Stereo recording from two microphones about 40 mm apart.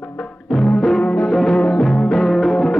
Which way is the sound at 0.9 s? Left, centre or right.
Centre.